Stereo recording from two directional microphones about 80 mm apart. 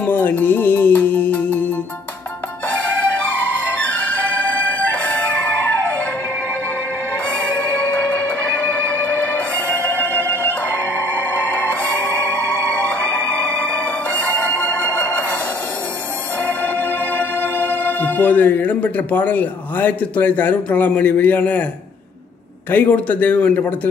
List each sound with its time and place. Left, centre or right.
0.0 s music: left
3.1 s music: centre
7.4 s music: centre
16.4 s speech: centre
22.7 s speech: left